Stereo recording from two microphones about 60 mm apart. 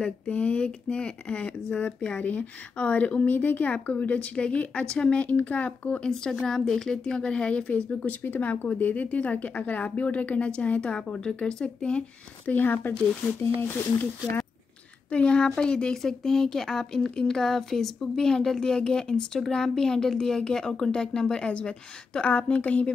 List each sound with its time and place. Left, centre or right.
0.0 s speech: left
12.4 s speech: left
15.0 s speech: centre